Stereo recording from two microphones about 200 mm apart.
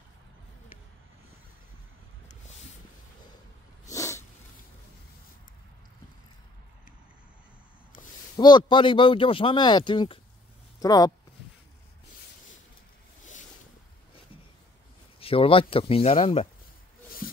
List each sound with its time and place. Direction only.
3.9 s cat: 15° left (ahead or behind)
8.4 s speech: 20° left (ahead or behind)
15.1 s speech: 30° left (ahead or behind)
17.2 s rub: 45° left (ahead or behind)